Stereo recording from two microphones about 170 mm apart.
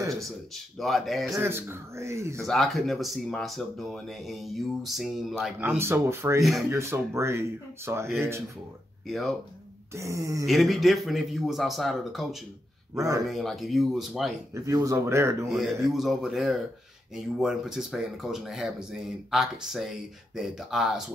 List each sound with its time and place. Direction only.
0.7 s speech: centre (ahead or behind)
1.3 s speech: 15° right (ahead or behind)
2.4 s speech: centre (ahead or behind)
5.6 s speech: 15° right (ahead or behind)
9.0 s speech: centre (ahead or behind)
9.9 s speech: 20° right (ahead or behind)
10.4 s speech: centre (ahead or behind)
14.5 s speech: 20° right (ahead or behind)
15.5 s speech: centre (ahead or behind)